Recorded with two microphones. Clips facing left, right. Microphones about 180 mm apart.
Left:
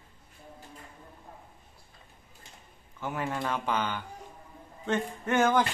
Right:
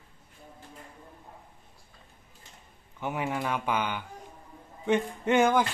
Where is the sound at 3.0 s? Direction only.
15° right (ahead or behind).